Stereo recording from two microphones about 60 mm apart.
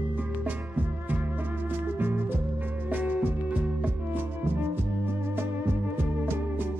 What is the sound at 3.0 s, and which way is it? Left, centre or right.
Music, right.